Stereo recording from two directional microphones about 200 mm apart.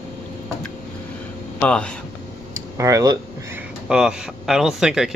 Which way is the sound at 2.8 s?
15° right (ahead or behind).